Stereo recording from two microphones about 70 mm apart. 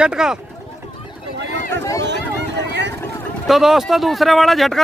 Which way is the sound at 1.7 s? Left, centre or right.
Left.